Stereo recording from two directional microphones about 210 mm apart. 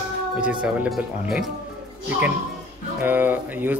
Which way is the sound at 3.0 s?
10° right (ahead or behind).